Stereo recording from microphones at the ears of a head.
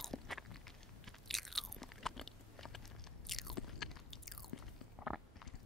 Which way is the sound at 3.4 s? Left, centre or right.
Left.